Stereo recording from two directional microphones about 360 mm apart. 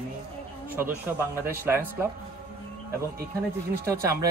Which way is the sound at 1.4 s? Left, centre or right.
Centre.